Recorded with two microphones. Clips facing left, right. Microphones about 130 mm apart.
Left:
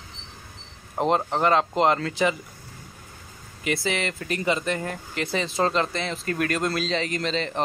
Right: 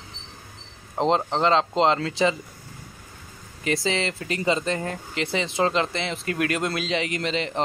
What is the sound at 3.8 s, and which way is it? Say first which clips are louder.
Speech: right 1 dB; 25° right (ahead or behind).